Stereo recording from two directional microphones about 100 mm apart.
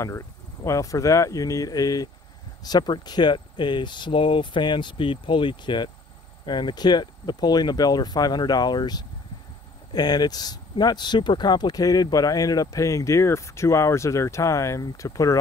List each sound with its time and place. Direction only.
0.7 s speech: 35° left (ahead or behind)